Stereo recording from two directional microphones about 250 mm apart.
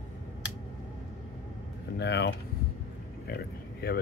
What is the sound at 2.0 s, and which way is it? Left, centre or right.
Speech, left.